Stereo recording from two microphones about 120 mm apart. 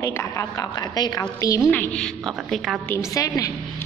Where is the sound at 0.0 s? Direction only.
20° left (ahead or behind).